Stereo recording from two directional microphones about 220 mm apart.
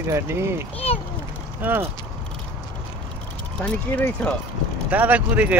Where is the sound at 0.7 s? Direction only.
25° left (ahead or behind).